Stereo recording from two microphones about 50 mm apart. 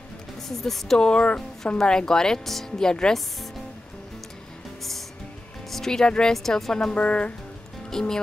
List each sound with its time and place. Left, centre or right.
0.5 s speech: centre
0.9 s speech: centre
5.7 s speech: centre
6.3 s speech: centre
6.9 s a woman's voice: left
7.9 s speech: centre